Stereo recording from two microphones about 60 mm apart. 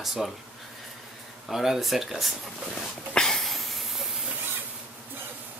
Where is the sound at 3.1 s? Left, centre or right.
Centre.